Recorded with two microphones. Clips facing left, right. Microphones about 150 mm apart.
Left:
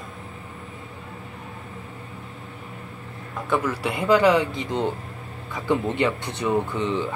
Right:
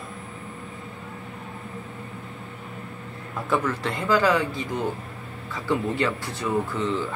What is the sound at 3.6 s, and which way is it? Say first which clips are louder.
Speech: left 3 dB; 10° left (ahead or behind).